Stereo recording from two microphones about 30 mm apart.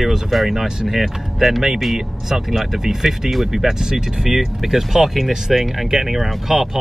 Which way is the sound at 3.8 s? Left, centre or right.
Right.